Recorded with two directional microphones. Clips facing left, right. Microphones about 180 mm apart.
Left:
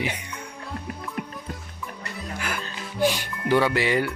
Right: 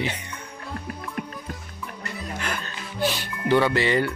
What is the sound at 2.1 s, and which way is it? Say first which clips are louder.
Music: right 1 dB; 10° left (ahead or behind).